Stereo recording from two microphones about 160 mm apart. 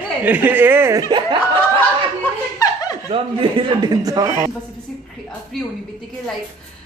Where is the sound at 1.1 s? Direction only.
30° right (ahead or behind).